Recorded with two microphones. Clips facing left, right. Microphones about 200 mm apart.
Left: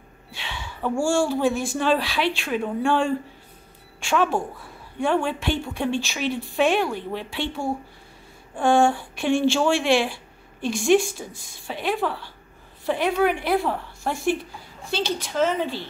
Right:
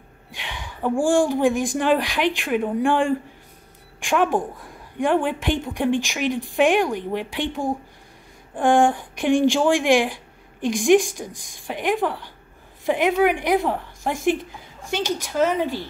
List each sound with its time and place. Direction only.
0.3 s a woman's voice: 15° right (ahead or behind)